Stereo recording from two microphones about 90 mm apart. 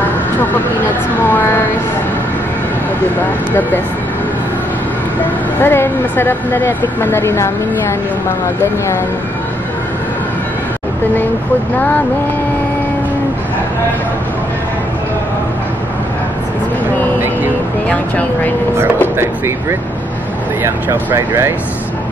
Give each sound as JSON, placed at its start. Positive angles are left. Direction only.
{"t": 1.2, "sound": "speech", "side_deg": 20}
{"t": 5.6, "sound": "speech", "side_deg": 25}
{"t": 17.8, "sound": "speech", "side_deg": 15}
{"t": 20.6, "sound": "speech", "side_deg": -30}